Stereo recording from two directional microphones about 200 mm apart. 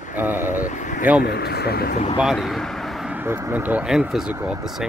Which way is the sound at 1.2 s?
55° left (ahead or behind).